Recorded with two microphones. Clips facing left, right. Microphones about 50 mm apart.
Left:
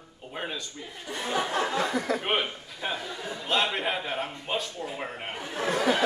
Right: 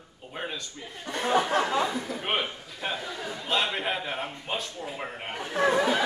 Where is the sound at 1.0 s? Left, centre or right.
Right.